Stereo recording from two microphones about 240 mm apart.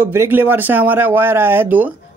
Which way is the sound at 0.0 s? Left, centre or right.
Centre.